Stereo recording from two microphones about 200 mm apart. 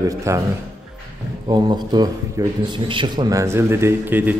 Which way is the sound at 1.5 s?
20° right (ahead or behind).